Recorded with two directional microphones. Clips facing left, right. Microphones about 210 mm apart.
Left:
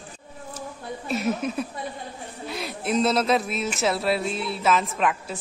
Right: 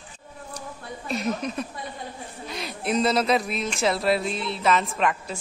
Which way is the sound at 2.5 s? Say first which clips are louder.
Left 1 dB; centre (ahead or behind).